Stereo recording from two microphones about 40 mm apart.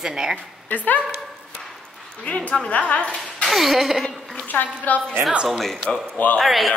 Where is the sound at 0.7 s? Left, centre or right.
Left.